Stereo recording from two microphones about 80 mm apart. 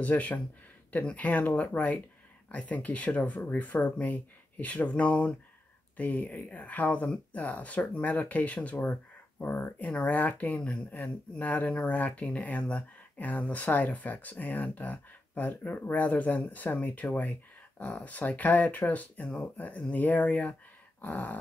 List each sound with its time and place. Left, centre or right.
0.0 s speech: centre